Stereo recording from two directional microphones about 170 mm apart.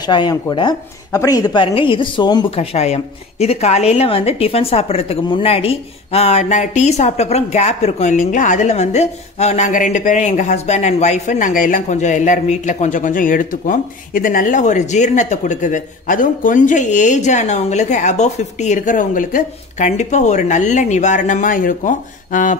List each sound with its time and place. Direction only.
0.0 s speech: 25° left (ahead or behind); by 22.6 s 50° left (ahead or behind)